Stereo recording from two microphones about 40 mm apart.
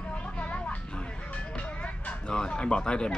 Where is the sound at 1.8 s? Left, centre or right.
Left.